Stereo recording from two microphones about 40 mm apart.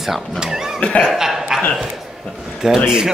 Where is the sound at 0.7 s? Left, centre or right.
Left.